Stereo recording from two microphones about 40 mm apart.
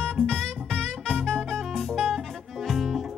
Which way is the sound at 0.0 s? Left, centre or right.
Left.